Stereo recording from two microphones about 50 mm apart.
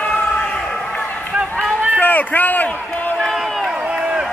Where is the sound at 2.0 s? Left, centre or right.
Left.